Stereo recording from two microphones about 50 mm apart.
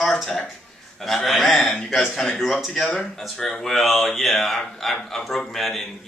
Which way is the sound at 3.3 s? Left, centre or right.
Centre.